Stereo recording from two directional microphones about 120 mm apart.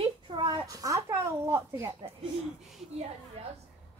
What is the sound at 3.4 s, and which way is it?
Speech, 65° right (ahead or behind).